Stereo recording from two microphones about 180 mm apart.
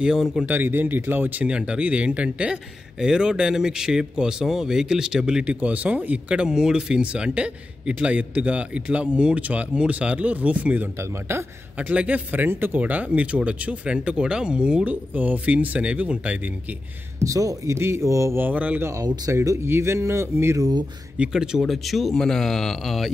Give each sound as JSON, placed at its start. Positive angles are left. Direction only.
{"t": 0.0, "sound": "speech", "side_deg": 0}
{"t": 17.2, "sound": "speech", "side_deg": -20}
{"t": 21.2, "sound": "speech", "side_deg": -5}